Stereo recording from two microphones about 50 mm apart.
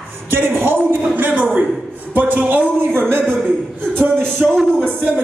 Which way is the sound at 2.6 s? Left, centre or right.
Left.